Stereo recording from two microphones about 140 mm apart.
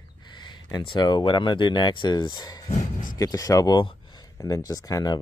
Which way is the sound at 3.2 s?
25° left (ahead or behind).